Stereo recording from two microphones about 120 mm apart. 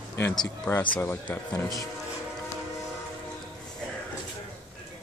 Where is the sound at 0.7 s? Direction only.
15° left (ahead or behind).